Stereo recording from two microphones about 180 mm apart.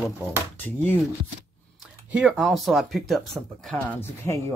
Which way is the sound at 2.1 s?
5° right (ahead or behind).